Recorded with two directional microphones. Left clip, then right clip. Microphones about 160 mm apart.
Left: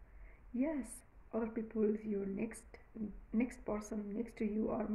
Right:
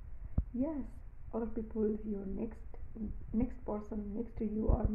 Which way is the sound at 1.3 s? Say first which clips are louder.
Right 1 dB; 30° left (ahead or behind).